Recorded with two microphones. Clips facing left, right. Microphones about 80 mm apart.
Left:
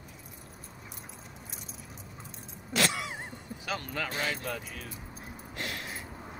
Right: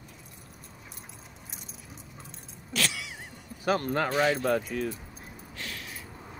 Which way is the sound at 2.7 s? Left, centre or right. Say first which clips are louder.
Left 3 dB; left.